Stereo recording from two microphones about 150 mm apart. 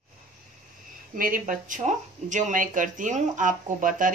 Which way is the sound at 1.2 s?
65° right (ahead or behind).